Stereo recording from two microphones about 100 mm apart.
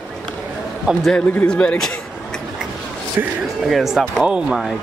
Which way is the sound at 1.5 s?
10° left (ahead or behind).